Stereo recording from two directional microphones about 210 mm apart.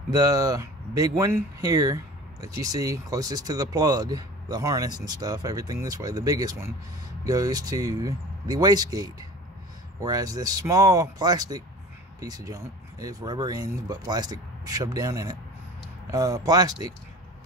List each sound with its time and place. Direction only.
0.1 s speech: 15° right (ahead or behind)